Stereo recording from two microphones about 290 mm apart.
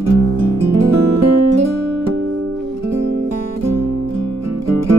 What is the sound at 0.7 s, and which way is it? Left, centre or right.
Guitar, right.